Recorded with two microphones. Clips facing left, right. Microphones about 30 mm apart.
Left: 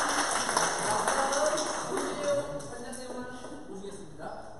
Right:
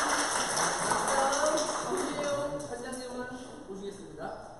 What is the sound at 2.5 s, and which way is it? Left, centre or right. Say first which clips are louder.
Music: right 2 dB; centre.